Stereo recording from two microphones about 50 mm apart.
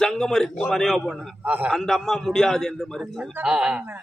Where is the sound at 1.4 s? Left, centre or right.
Right.